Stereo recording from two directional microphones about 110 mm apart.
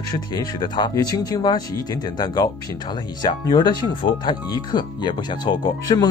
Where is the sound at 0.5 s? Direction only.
40° left (ahead or behind).